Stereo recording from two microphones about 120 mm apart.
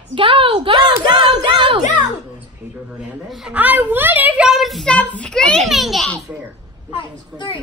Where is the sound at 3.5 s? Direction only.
15° right (ahead or behind).